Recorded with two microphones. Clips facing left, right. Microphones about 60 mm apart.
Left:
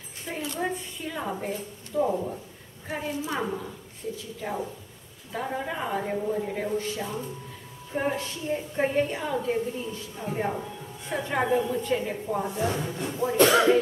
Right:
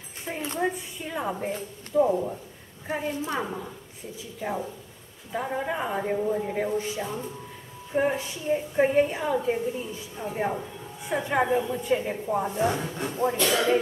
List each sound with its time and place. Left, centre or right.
0.6 s a woman's voice: centre
12.5 s a woman's voice: right